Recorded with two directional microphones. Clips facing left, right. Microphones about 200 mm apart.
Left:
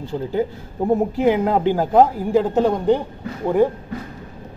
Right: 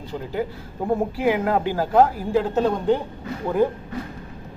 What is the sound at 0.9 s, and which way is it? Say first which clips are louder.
A man's voice: left 4 dB; 20° left (ahead or behind).